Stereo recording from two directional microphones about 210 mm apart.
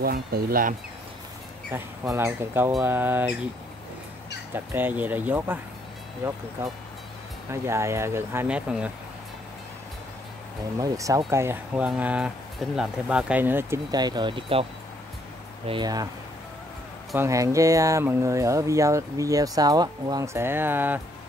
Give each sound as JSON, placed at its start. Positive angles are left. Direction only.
{"t": 0.0, "sound": "speech", "side_deg": -45}
{"t": 1.7, "sound": "speech", "side_deg": -10}
{"t": 4.6, "sound": "speech", "side_deg": -10}
{"t": 7.6, "sound": "speech", "side_deg": -15}
{"t": 10.8, "sound": "speech", "side_deg": -15}
{"t": 17.1, "sound": "speech", "side_deg": -15}